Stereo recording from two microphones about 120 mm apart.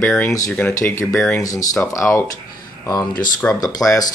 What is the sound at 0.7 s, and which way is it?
Speech, 25° left (ahead or behind).